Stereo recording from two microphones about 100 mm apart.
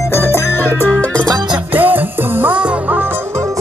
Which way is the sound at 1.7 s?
20° right (ahead or behind).